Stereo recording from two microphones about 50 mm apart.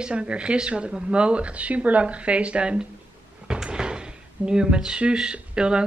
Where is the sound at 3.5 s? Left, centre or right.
Centre.